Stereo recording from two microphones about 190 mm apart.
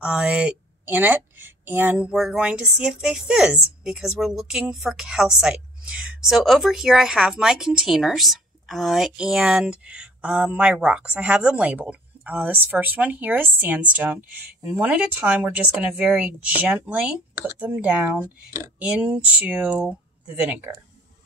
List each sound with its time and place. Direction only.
0.0 s a woman's voice: 5° right (ahead or behind)